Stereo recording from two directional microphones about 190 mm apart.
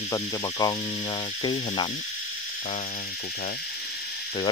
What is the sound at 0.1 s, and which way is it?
Speech, 20° left (ahead or behind).